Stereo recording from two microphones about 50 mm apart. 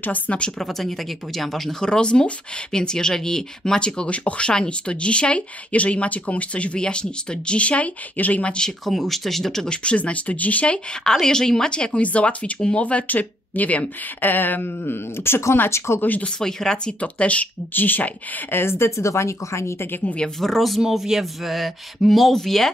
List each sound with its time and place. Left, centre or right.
0.3 s speech: left
0.6 s speech: centre; by 8.6 s left
8.6 s speech: centre
9.8 s speech: left
11.1 s speech: centre; by 15.4 s left
16.0 s speech: left
16.3 s speech: centre; by 17.5 s left
17.7 s speech: left
18.6 s speech: left
18.9 s speech: left
20.3 s speech: centre
20.8 s speech: centre